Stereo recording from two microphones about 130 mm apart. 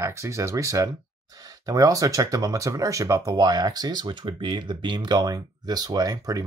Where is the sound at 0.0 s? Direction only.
20° right (ahead or behind).